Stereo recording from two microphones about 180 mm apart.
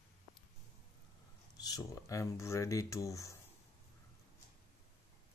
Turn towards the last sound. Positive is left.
turn(degrees=15)  # may be behind; listen again after turning